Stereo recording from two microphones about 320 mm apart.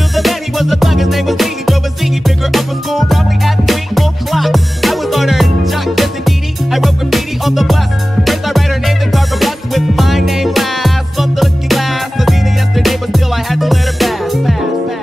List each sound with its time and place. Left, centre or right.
0.1 s music: centre